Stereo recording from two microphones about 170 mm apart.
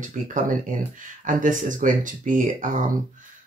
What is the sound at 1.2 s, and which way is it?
Speech, 50° right (ahead or behind).